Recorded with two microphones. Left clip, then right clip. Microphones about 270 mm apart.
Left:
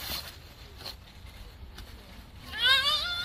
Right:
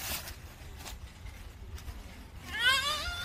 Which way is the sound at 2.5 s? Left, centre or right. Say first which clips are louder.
Left 3 dB; centre.